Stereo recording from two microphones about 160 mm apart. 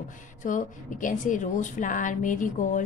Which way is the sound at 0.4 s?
55° left (ahead or behind).